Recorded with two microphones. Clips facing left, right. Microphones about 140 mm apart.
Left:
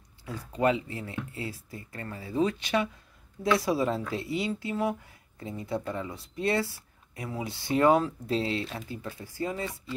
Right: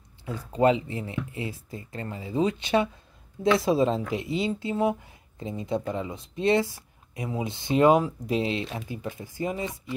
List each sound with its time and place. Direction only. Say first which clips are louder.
0.2 s speech: right 5 dB; 25° right (ahead or behind)